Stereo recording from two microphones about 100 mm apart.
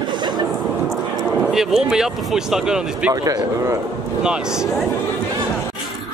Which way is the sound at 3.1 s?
35° right (ahead or behind).